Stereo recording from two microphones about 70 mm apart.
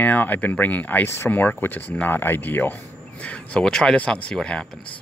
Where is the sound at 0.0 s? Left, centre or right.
Left.